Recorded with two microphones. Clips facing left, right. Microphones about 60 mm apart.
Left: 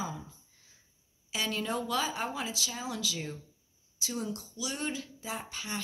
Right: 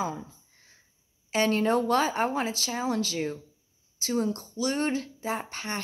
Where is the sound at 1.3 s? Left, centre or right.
Right.